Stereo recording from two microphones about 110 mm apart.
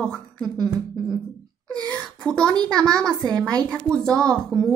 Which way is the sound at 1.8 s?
35° right (ahead or behind).